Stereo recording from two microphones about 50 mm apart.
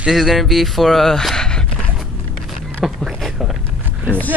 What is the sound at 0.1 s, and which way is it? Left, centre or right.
Speech, centre.